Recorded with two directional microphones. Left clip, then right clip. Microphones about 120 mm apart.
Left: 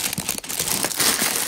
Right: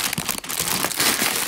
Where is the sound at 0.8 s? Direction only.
10° left (ahead or behind).